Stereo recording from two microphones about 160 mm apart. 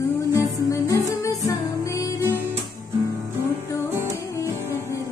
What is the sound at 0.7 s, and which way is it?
Music, 20° left (ahead or behind).